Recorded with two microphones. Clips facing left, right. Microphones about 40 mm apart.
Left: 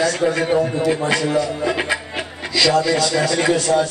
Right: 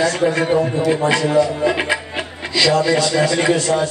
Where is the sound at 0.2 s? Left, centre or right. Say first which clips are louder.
Right 1 dB; centre.